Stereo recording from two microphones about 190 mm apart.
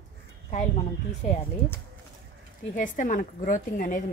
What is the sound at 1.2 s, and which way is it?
Speech, 40° left (ahead or behind).